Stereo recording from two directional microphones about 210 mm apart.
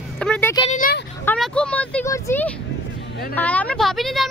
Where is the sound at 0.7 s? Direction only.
40° left (ahead or behind).